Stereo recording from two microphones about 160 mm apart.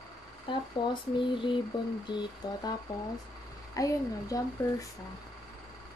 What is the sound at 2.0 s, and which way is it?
Speech, 25° left (ahead or behind).